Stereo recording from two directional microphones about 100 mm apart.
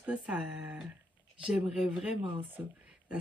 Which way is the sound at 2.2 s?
60° right (ahead or behind).